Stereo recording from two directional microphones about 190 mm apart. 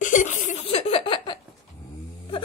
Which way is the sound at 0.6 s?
30° left (ahead or behind).